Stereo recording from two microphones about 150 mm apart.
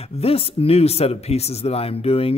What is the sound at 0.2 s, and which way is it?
Speech, 40° left (ahead or behind).